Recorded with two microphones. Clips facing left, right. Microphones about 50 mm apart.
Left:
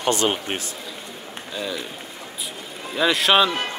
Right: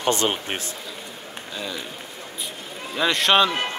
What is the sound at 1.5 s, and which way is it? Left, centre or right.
Speech, centre.